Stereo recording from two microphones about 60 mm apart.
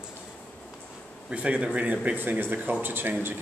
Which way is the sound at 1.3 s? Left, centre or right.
Right.